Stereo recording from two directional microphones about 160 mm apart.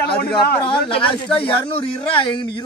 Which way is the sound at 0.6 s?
35° left (ahead or behind).